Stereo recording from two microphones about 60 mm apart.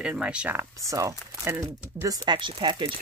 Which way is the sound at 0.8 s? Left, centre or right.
Right.